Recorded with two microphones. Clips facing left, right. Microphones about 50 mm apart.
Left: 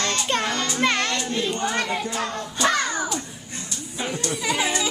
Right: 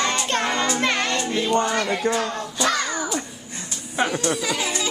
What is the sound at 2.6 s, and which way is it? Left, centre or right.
Music, left.